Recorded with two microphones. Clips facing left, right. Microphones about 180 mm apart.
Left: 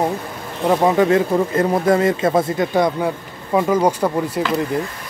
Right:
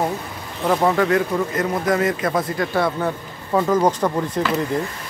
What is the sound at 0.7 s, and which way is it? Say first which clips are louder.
Speech: left 3 dB; 20° left (ahead or behind).